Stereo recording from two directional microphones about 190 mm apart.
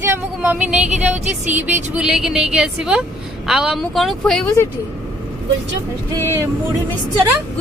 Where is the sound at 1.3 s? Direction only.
40° right (ahead or behind).